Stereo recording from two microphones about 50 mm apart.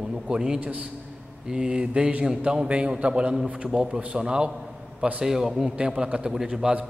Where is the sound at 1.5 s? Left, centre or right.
Centre.